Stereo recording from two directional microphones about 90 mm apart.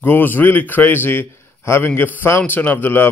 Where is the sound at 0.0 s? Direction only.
20° left (ahead or behind).